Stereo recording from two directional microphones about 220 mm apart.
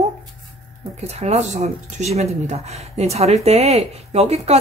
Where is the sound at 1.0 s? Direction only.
30° right (ahead or behind).